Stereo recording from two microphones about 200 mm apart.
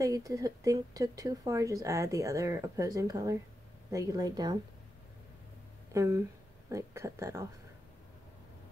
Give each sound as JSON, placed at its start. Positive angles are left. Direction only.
{"t": 0.0, "sound": "speech", "side_deg": -15}
{"t": 5.9, "sound": "speech", "side_deg": -15}